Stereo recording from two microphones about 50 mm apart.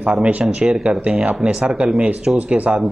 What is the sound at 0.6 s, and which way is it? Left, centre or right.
Speech, centre.